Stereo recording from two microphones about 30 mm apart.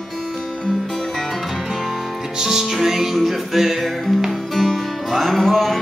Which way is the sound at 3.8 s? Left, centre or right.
Centre.